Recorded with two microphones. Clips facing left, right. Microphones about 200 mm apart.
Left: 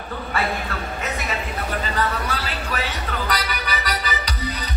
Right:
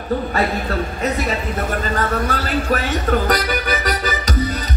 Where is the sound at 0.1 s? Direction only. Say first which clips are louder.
Right 6 dB; 40° right (ahead or behind).